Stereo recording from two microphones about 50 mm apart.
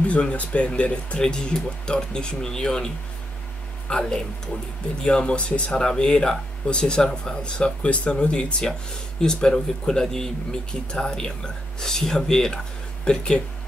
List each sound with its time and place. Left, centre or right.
0.0 s speech: left
3.9 s speech: centre